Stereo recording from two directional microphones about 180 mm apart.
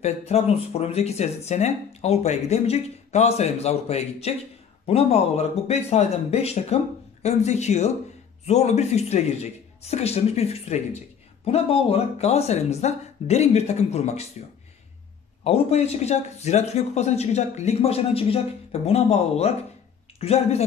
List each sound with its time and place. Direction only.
0.0 s speech: 35° left (ahead or behind)
15.4 s speech: 35° left (ahead or behind)